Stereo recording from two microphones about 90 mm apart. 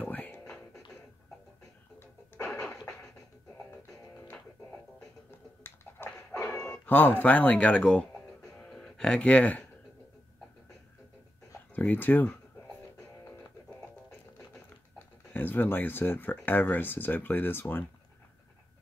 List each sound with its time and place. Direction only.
0.0 s music: 15° left (ahead or behind)
2.0 s radio: 25° left (ahead or behind)
2.7 s music: 40° left (ahead or behind)
6.6 s speech: 15° left (ahead or behind)
8.5 s a sound: 10° left (ahead or behind)
11.7 s speech: 20° left (ahead or behind)
15.3 s speech: 20° left (ahead or behind)